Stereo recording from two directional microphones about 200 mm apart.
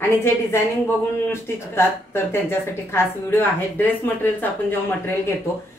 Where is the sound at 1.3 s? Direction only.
10° left (ahead or behind).